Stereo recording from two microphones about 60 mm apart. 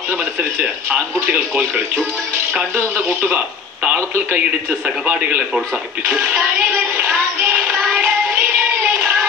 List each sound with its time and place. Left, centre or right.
0.2 s speech: right
3.1 s speech: right
3.9 s speech: right
4.8 s a man's voice: right
6.0 s music: right
7.6 s music: right
8.0 s music: right